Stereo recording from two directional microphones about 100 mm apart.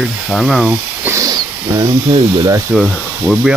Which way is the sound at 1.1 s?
35° right (ahead or behind).